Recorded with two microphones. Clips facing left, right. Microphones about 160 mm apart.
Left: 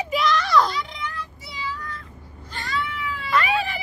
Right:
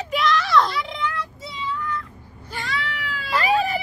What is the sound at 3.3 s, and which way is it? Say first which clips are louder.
Vehicle: right 3 dB; 40° right (ahead or behind).